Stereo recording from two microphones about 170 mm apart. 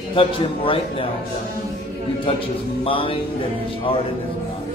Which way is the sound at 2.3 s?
35° left (ahead or behind).